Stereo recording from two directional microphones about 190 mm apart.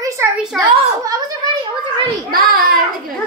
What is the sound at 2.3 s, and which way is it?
Speech, 50° right (ahead or behind).